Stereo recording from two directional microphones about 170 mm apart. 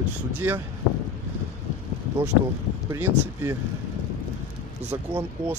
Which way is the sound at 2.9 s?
20° right (ahead or behind).